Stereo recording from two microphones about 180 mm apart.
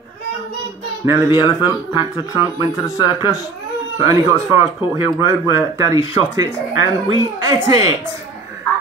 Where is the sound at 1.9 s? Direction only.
20° left (ahead or behind).